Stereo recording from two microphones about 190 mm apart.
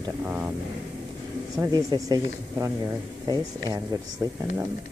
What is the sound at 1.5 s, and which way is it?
Speech, 20° right (ahead or behind).